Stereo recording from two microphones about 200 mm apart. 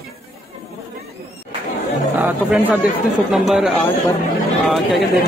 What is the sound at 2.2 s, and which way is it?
Speech, 10° right (ahead or behind).